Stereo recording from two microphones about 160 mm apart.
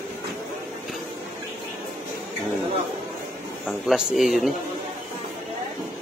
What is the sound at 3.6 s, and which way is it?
Speech, centre (ahead or behind).